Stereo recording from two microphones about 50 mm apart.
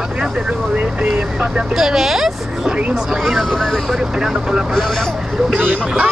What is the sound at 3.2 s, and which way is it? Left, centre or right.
Speech, centre.